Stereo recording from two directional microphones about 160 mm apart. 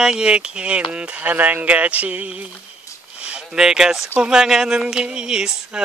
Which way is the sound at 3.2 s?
5° right (ahead or behind).